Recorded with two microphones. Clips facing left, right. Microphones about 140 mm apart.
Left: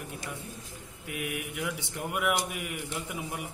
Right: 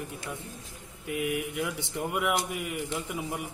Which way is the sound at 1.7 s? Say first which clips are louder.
Right 3 dB; 20° right (ahead or behind).